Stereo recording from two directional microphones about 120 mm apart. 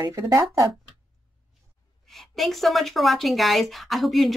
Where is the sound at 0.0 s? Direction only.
30° right (ahead or behind).